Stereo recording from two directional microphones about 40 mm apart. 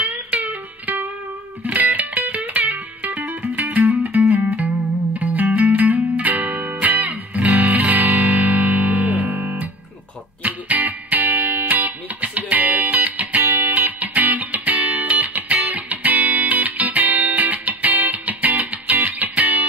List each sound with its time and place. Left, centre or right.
0.0 s music: right